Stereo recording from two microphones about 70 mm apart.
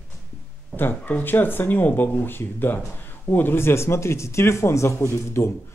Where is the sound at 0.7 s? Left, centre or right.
Left.